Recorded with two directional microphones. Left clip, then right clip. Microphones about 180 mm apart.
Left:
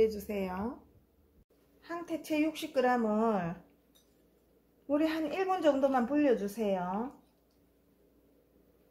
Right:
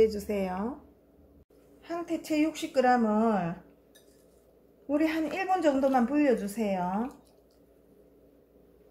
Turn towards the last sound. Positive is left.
turn(degrees=20)  # may be behind; listen again after turning